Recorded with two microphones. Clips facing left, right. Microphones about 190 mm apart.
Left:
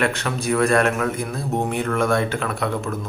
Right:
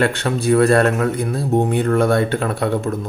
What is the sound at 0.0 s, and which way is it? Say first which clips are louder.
Speech: right 5 dB; 30° right (ahead or behind).